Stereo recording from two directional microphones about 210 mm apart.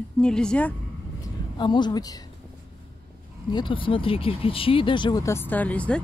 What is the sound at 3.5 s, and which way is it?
Speech, 25° left (ahead or behind).